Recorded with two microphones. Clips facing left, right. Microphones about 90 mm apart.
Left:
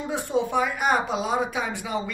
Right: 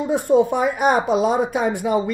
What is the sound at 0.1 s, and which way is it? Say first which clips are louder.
Speech: right 8 dB; 50° right (ahead or behind).